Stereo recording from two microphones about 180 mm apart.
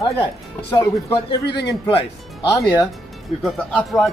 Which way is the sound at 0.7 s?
20° left (ahead or behind).